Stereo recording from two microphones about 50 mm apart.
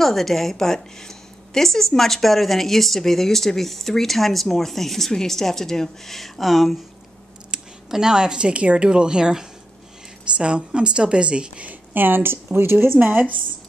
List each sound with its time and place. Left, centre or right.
0.0 s a woman's voice: centre
7.5 s a woman's voice: centre
11.9 s a woman's voice: right